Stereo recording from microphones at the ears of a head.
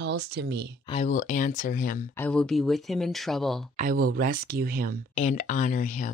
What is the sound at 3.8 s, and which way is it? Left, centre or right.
Speech, right.